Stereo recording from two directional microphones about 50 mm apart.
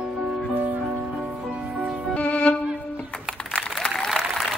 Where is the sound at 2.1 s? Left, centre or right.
Left.